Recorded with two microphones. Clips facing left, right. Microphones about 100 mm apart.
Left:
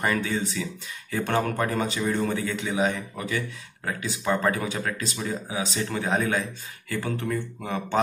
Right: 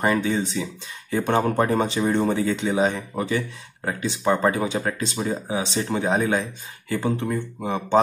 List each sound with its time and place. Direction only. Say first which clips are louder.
0.0 s speech: right 4 dB; 25° right (ahead or behind)
1.4 s speech: right 5 dB; 30° right (ahead or behind)